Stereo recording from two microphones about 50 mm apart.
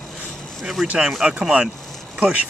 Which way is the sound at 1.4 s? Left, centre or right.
Centre.